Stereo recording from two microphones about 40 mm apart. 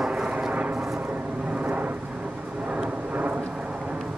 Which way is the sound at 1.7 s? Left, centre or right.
Right.